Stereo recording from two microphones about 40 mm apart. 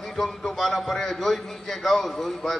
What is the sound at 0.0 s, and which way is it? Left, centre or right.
A man's voice, centre.